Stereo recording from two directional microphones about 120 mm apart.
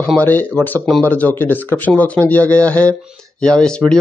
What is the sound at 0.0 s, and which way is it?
Speech, 10° left (ahead or behind).